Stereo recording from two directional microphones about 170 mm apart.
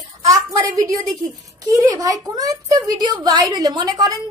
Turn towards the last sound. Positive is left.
turn(degrees=-25)  # may be behind; listen again after turning